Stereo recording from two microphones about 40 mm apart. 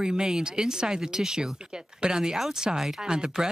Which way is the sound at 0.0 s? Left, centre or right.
Centre.